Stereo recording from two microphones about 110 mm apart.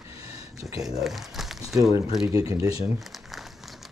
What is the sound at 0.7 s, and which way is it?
Speech, 35° right (ahead or behind).